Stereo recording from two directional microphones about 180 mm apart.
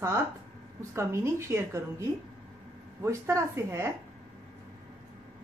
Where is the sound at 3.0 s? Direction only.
15° right (ahead or behind).